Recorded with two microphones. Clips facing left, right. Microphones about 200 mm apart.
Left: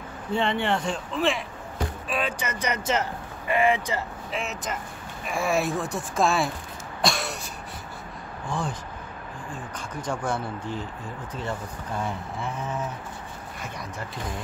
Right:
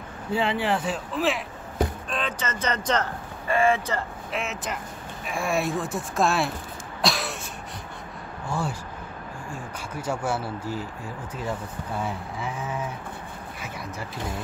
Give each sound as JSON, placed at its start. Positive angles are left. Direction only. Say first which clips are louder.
{"t": 0.3, "sound": "speech", "louder": "even", "side_deg": -5}
{"t": 2.0, "sound": "speech", "louder": "left 1 dB", "side_deg": 10}
{"t": 4.3, "sound": "speech", "louder": "even", "side_deg": 0}
{"t": 7.0, "sound": "cough", "louder": "even", "side_deg": 0}
{"t": 8.5, "sound": "speech", "louder": "right 1 dB", "side_deg": -10}
{"t": 12.0, "sound": "speech", "louder": "even", "side_deg": -5}
{"t": 13.6, "sound": "a sound", "louder": "even", "side_deg": -5}